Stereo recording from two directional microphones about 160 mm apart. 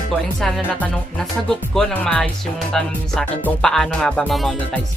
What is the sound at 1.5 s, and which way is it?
Speech, 5° left (ahead or behind).